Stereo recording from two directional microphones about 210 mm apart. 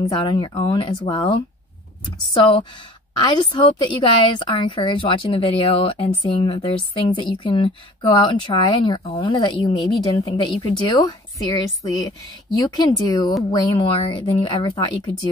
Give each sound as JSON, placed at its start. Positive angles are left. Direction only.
{"t": 0.0, "sound": "speech", "side_deg": 25}
{"t": 3.2, "sound": "speech", "side_deg": 20}